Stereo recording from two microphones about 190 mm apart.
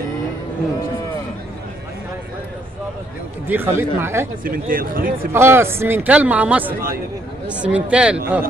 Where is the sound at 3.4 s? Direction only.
10° right (ahead or behind).